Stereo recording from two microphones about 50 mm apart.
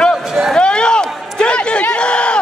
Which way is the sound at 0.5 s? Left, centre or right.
Centre.